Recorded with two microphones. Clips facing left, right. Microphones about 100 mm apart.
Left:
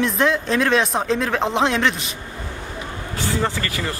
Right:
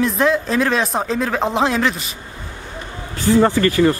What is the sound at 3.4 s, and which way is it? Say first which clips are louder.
Speech: right 12 dB; 40° right (ahead or behind).